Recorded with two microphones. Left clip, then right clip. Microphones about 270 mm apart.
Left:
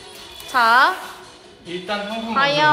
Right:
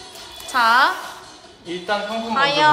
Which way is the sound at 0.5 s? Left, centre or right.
Centre.